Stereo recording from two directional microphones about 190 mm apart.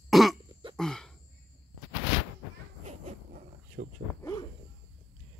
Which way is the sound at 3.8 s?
55° right (ahead or behind).